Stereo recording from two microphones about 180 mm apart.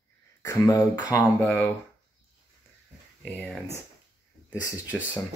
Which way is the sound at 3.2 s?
5° left (ahead or behind).